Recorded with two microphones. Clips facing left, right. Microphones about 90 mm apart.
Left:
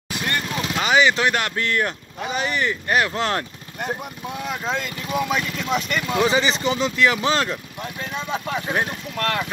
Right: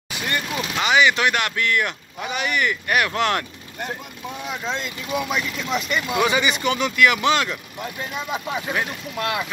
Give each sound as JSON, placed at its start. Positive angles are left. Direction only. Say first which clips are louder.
{"t": 0.1, "sound": "vehicle", "louder": "left 1 dB", "side_deg": -5}
{"t": 0.7, "sound": "speech", "louder": "even", "side_deg": 35}
{"t": 4.4, "sound": "speech", "louder": "left 2 dB", "side_deg": 0}
{"t": 6.2, "sound": "speech", "louder": "left 1 dB", "side_deg": 30}
{"t": 8.0, "sound": "speech", "louder": "left 1 dB", "side_deg": -10}